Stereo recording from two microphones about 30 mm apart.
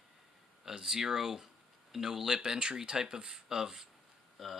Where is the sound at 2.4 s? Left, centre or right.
Right.